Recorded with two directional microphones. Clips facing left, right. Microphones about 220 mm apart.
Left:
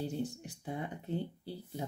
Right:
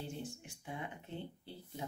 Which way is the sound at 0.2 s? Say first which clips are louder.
Left 8 dB; 35° left (ahead or behind).